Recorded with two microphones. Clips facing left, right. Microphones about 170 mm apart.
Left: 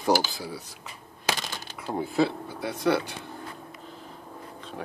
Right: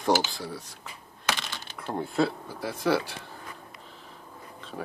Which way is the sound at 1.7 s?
5° left (ahead or behind).